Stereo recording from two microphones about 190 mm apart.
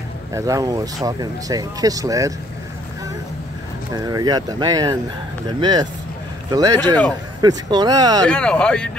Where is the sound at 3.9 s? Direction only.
20° right (ahead or behind).